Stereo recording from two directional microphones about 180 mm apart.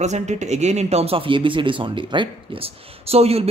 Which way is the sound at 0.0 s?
40° right (ahead or behind).